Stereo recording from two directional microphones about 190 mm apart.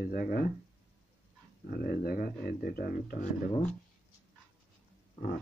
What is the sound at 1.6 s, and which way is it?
Speech, 50° left (ahead or behind).